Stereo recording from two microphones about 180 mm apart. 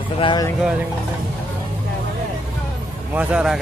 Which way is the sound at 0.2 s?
25° left (ahead or behind).